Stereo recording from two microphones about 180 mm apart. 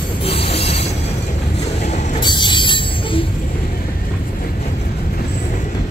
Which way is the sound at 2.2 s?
25° left (ahead or behind).